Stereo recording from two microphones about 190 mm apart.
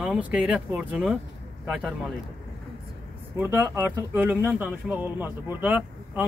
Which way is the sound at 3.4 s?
15° right (ahead or behind).